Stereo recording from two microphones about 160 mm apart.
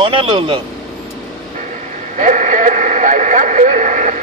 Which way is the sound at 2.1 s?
50° right (ahead or behind).